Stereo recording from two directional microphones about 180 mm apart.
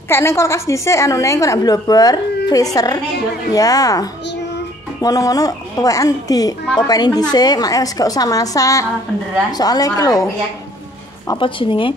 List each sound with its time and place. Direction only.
0.1 s a woman's voice: 15° left (ahead or behind)